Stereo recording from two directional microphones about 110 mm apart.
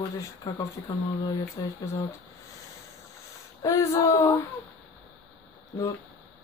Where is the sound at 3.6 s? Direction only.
30° left (ahead or behind).